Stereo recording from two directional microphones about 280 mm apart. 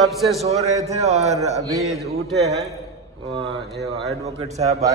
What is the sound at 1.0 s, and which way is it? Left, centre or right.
Speech, right.